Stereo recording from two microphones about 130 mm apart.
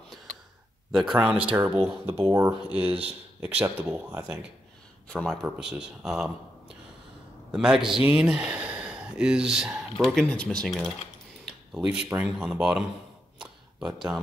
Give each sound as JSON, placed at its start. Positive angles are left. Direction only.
{"t": 0.9, "sound": "speech", "side_deg": -5}
{"t": 2.8, "sound": "speech", "side_deg": -50}
{"t": 3.3, "sound": "speech", "side_deg": -10}
{"t": 5.1, "sound": "speech", "side_deg": 5}
{"t": 7.5, "sound": "speech", "side_deg": -5}
{"t": 13.4, "sound": "tick", "side_deg": -5}